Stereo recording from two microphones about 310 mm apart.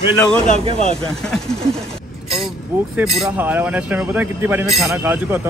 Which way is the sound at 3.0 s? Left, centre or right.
Centre.